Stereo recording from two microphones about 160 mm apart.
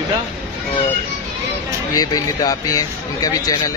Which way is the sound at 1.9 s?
25° left (ahead or behind).